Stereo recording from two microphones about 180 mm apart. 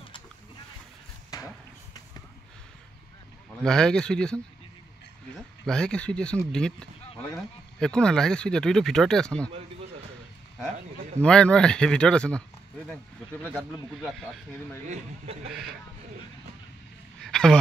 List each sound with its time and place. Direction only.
3.6 s speech: 5° left (ahead or behind)
5.7 s speech: 5° left (ahead or behind)
11.2 s speech: 5° left (ahead or behind)
14.9 s a man's voice: 35° right (ahead or behind)
17.2 s a sound: 5° left (ahead or behind)